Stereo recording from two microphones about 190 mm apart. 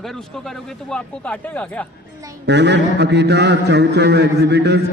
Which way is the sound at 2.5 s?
65° right (ahead or behind).